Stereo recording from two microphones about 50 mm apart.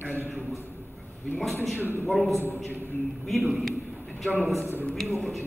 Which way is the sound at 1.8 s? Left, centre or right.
Right.